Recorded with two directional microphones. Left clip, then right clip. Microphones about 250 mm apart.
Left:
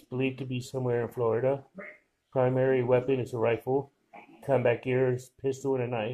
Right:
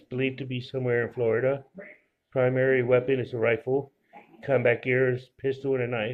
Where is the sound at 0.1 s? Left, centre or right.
Centre.